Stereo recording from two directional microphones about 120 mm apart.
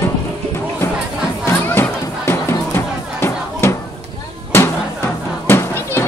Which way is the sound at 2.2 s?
20° left (ahead or behind).